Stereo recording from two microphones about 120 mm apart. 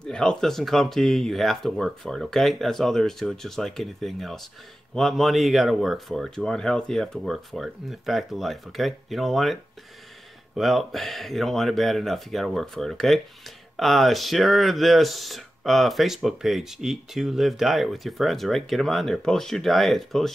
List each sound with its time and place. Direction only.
0.0 s speech: 5° left (ahead or behind)